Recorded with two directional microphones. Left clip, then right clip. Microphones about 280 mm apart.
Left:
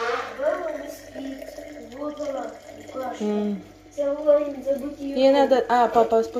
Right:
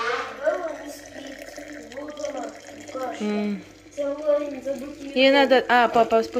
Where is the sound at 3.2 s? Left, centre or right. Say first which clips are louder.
Left 3 dB; right.